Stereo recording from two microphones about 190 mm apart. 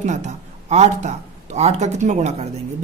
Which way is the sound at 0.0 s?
35° right (ahead or behind).